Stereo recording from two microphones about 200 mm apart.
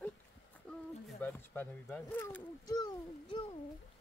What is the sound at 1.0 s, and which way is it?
Speech, 10° left (ahead or behind).